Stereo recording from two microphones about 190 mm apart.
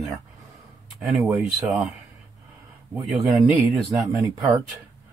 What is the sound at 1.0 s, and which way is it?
Speech, 5° right (ahead or behind).